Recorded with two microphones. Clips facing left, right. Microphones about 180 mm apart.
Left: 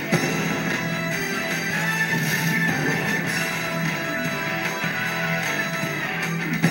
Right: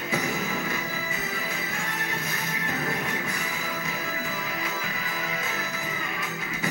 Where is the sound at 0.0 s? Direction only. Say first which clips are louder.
Left 6 dB; 75° left (ahead or behind).